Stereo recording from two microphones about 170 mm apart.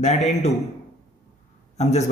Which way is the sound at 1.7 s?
40° left (ahead or behind).